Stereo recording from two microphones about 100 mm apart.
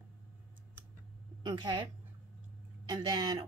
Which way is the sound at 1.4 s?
50° right (ahead or behind).